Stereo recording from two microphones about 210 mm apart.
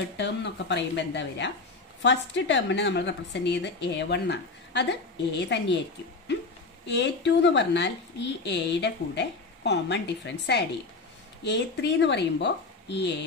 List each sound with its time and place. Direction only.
0.2 s a woman's voice: 55° left (ahead or behind)
6.9 s a woman's voice: 55° left (ahead or behind)